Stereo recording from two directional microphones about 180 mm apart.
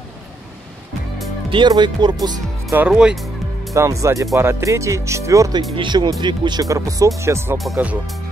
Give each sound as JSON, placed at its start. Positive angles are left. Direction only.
{"t": 1.5, "sound": "speech", "side_deg": -25}
{"t": 2.7, "sound": "music", "side_deg": -5}
{"t": 3.7, "sound": "speech", "side_deg": -15}